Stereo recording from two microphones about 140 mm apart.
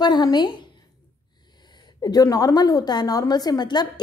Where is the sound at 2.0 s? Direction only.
30° left (ahead or behind).